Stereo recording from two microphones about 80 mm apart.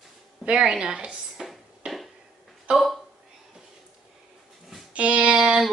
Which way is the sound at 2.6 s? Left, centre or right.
Centre.